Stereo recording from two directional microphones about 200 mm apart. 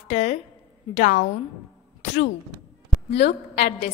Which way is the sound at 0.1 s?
35° left (ahead or behind).